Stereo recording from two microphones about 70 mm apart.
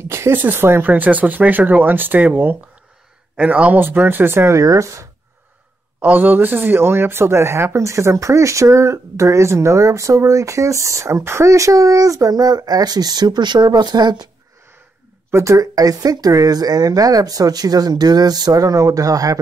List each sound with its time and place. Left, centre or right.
0.1 s speech: right
4.6 s speech: right
5.9 s speech: right
15.3 s speech: right